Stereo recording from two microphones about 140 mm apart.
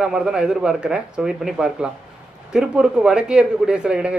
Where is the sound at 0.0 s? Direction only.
5° right (ahead or behind).